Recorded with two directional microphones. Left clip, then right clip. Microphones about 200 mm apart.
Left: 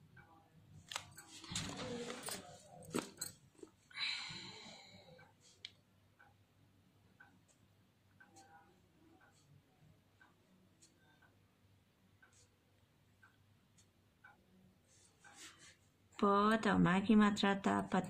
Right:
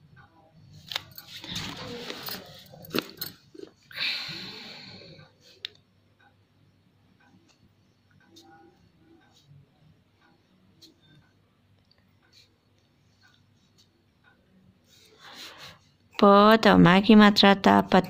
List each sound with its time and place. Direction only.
3.9 s a sound: 35° right (ahead or behind)
5.6 s tick: 35° right (ahead or behind)
16.2 s speech: 50° right (ahead or behind)